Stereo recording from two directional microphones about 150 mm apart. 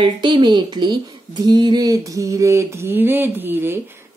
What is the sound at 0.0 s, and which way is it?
Speech, 30° right (ahead or behind).